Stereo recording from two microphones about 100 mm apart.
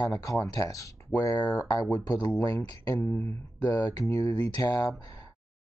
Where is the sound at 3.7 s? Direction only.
40° left (ahead or behind).